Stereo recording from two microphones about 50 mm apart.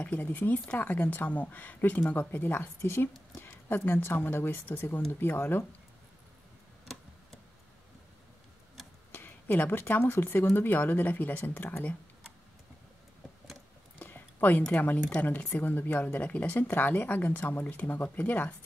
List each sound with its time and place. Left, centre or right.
0.2 s speech: left
2.8 s a woman's voice: left
3.4 s speech: left
9.1 s speech: left
13.9 s a sound: left
14.7 s speech: left